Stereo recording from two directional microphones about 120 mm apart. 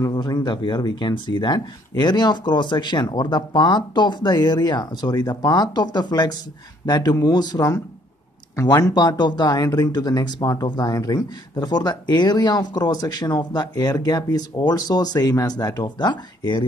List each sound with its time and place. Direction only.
0.0 s speech: 35° left (ahead or behind)